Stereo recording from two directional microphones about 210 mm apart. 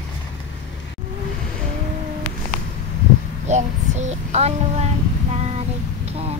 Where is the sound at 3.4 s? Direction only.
35° right (ahead or behind).